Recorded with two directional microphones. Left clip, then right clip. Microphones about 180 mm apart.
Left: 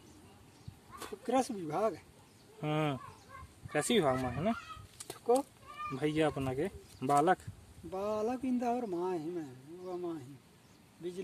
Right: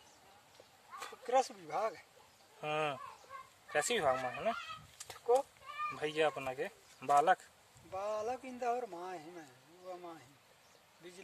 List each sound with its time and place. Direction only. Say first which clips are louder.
0.9 s speech: even; 50° left (ahead or behind)
2.6 s speech: left 1 dB; 5° right (ahead or behind)
4.9 s chicken: left 1 dB; 55° left (ahead or behind)
5.9 s speech: left 3 dB; 10° right (ahead or behind)
7.9 s speech: left 3 dB; 45° left (ahead or behind)